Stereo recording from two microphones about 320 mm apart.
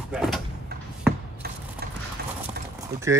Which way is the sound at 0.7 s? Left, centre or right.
Right.